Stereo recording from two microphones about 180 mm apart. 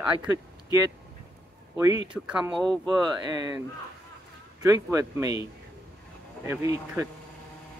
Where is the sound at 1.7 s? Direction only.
20° right (ahead or behind).